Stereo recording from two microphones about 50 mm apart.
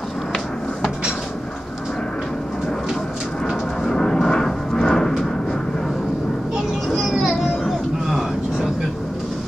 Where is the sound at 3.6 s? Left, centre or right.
Centre.